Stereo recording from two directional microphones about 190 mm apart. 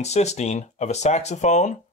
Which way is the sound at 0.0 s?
35° left (ahead or behind).